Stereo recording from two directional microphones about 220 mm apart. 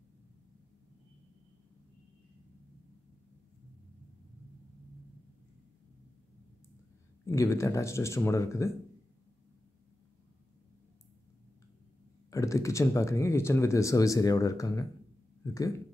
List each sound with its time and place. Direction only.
7.2 s speech: 15° left (ahead or behind)
12.3 s speech: 15° left (ahead or behind)